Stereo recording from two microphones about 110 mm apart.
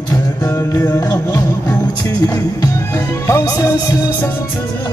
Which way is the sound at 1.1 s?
35° left (ahead or behind).